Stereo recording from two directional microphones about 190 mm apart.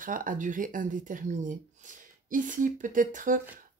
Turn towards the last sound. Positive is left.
turn(degrees=-45)  # may be behind; listen again after turning